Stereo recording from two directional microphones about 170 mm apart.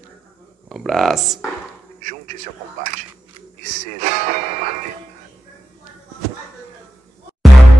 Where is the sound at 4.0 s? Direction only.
45° right (ahead or behind).